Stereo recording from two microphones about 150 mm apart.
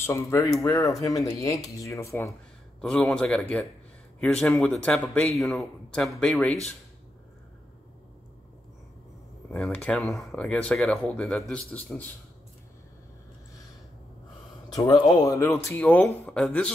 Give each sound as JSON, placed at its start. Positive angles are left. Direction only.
{"t": 0.0, "sound": "speech", "side_deg": 20}
{"t": 2.8, "sound": "speech", "side_deg": 5}
{"t": 9.5, "sound": "speech", "side_deg": 10}
{"t": 14.9, "sound": "speech", "side_deg": 25}
{"t": 15.5, "sound": "speech", "side_deg": 10}